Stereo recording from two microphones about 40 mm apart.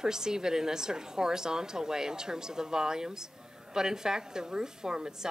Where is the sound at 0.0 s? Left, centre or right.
Centre.